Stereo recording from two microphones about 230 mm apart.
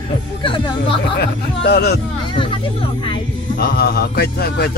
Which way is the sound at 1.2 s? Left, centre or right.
Left.